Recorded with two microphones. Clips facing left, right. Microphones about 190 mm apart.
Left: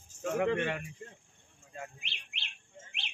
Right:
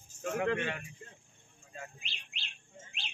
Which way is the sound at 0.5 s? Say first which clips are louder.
Left 3 dB; 60° left (ahead or behind).